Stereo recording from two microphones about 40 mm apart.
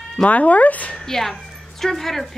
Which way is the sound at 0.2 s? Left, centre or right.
Left.